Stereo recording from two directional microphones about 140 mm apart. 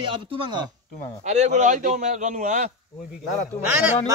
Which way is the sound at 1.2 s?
55° right (ahead or behind).